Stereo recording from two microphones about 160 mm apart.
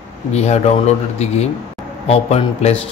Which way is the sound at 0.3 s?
45° left (ahead or behind).